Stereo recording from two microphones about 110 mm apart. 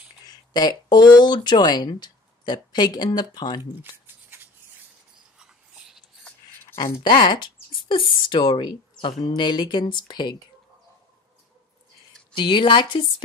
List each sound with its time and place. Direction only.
0.3 s speech: 40° left (ahead or behind)
3.9 s scissors: 20° right (ahead or behind)
6.8 s speech: 40° left (ahead or behind)
12.4 s speech: 45° left (ahead or behind)